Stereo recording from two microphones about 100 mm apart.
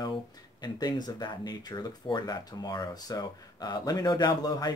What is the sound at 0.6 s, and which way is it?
Speech, 45° left (ahead or behind).